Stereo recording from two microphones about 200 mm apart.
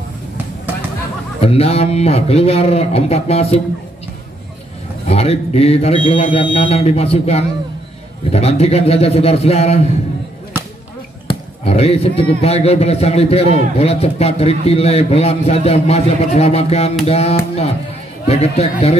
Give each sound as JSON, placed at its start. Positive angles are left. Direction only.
{"t": 1.4, "sound": "speech", "side_deg": 30}
{"t": 5.0, "sound": "a man's voice", "side_deg": 30}
{"t": 11.2, "sound": "speech", "side_deg": 30}